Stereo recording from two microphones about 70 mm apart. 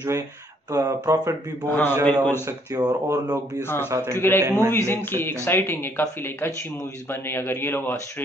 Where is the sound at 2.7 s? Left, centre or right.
Right.